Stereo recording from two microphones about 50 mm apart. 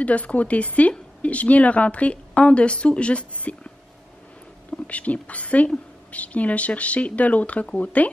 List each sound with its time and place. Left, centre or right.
0.0 s a woman's voice: left